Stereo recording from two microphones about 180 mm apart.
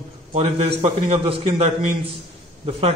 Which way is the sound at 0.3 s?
35° right (ahead or behind).